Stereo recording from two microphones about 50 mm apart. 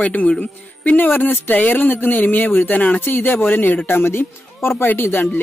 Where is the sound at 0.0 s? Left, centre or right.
Left.